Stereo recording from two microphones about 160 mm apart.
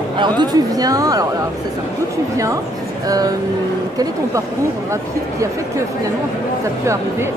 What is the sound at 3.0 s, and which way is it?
Speech, 20° right (ahead or behind).